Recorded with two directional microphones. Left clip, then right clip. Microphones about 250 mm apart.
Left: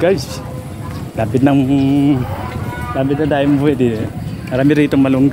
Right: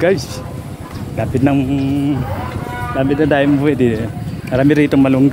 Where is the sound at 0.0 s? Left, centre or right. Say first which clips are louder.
Even; centre.